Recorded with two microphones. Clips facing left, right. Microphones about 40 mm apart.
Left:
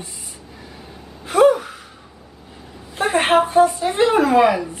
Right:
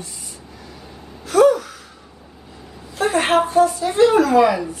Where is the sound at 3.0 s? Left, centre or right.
Left.